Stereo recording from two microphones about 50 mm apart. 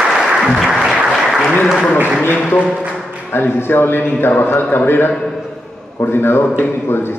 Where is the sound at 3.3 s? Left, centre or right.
Left.